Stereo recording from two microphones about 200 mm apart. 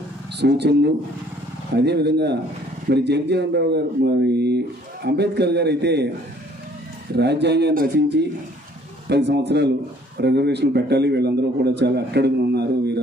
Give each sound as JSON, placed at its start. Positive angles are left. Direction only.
{"t": 0.4, "sound": "a man's voice", "side_deg": -55}
{"t": 7.2, "sound": "a man's voice", "side_deg": -55}